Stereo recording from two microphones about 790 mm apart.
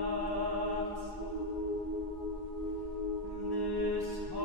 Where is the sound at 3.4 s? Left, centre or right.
Left.